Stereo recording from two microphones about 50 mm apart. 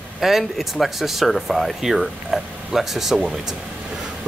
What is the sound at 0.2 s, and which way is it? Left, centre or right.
Speech, centre.